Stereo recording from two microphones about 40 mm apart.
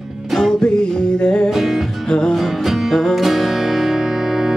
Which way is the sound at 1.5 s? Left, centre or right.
Centre.